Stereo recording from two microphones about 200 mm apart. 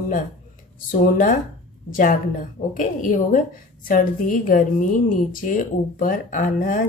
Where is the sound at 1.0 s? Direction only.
40° left (ahead or behind).